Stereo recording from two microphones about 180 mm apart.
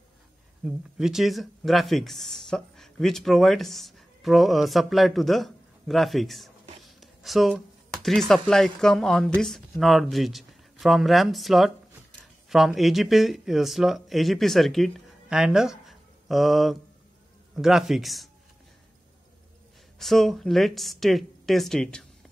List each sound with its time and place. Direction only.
0.7 s speech: centre (ahead or behind)
20.0 s speech: centre (ahead or behind)